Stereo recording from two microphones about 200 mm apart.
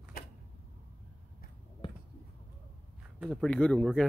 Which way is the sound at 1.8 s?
25° left (ahead or behind).